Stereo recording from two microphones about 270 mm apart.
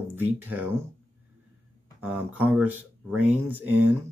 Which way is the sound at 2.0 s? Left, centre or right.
Centre.